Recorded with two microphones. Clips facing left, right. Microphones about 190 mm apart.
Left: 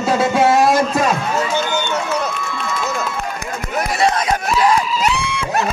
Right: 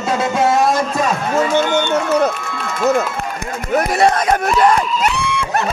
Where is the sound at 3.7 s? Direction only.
50° right (ahead or behind).